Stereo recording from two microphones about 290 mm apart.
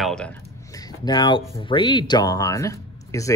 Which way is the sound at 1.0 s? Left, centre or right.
Centre.